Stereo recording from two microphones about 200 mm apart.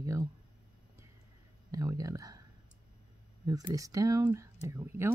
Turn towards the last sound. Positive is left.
turn(degrees=-10)  # may be behind; listen again after turning